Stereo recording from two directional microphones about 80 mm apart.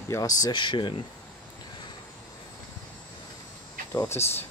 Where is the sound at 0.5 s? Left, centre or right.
Left.